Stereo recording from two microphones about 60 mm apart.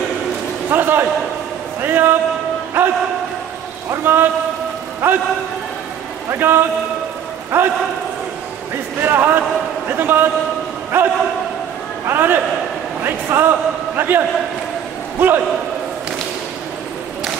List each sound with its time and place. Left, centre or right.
0.7 s a man's voice: right
4.0 s a man's voice: right
6.3 s a man's voice: right
9.0 s a man's voice: right